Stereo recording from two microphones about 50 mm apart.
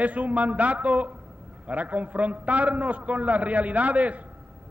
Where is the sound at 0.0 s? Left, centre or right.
Right.